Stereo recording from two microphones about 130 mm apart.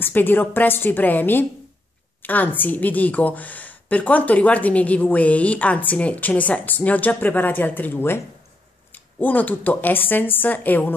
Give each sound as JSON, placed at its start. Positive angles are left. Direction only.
{"t": 0.0, "sound": "a woman's voice", "side_deg": 15}